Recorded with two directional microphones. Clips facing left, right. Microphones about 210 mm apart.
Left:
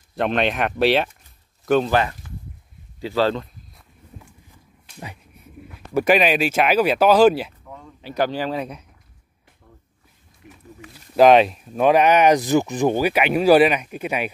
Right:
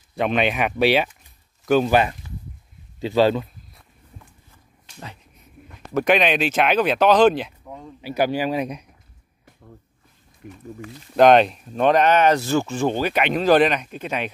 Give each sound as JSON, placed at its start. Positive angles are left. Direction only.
{"t": 0.1, "sound": "speech", "side_deg": 0}
{"t": 1.9, "sound": "speech", "side_deg": -15}
{"t": 5.7, "sound": "speech", "side_deg": 5}
{"t": 7.6, "sound": "speech", "side_deg": -15}
{"t": 10.4, "sound": "speech", "side_deg": -50}
{"t": 11.1, "sound": "speech", "side_deg": 5}